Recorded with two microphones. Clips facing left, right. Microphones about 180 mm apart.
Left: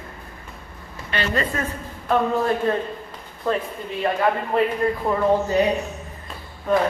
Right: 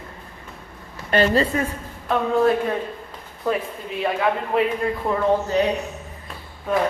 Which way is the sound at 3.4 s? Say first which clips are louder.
Even; 5° right (ahead or behind).